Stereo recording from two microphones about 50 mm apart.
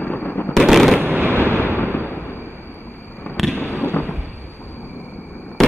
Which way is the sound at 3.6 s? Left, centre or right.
Left.